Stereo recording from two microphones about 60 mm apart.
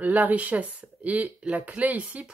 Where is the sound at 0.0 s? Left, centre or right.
Right.